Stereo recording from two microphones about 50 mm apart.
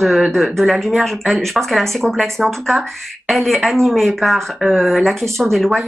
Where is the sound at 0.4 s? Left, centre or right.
Centre.